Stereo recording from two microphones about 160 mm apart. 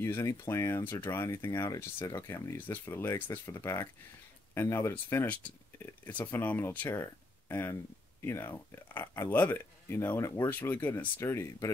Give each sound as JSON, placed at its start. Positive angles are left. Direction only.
{"t": 0.0, "sound": "speech", "side_deg": 15}